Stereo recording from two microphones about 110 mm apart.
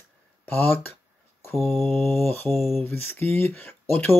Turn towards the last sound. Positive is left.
turn(degrees=20)  # may be behind; listen again after turning